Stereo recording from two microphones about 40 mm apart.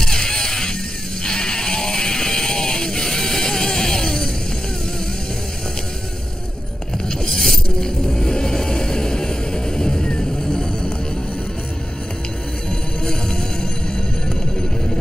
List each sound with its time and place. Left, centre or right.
0.0 s music: centre
7.2 s vehicle: centre
13.0 s music: centre